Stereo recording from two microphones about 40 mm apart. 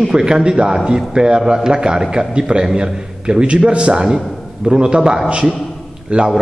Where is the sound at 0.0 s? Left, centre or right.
Centre.